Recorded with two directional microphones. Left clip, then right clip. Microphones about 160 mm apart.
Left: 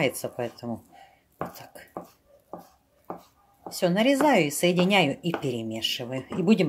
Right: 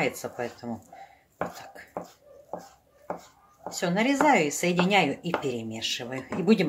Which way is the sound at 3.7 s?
65° left (ahead or behind).